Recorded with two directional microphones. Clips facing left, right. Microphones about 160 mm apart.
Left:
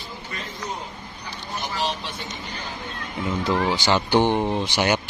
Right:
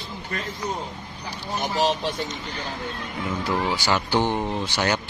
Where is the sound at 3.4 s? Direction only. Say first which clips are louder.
Left 3 dB; 20° left (ahead or behind).